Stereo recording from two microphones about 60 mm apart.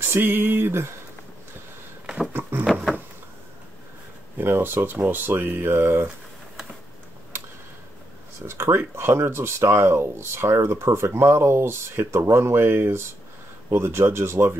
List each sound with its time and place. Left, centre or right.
0.0 s speech: right
2.7 s a sound: centre
4.4 s speech: right
8.5 s speech: right